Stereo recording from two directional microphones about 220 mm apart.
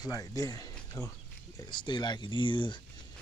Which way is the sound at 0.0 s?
15° left (ahead or behind).